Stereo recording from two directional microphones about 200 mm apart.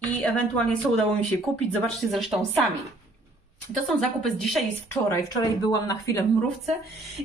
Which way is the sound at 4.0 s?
Centre (ahead or behind).